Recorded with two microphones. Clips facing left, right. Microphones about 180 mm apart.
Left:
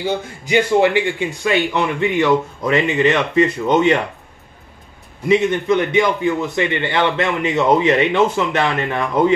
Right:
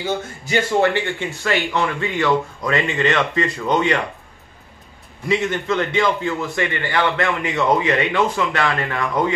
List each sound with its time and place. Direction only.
0.0 s a man's voice: 15° left (ahead or behind)
5.3 s a man's voice: 20° left (ahead or behind)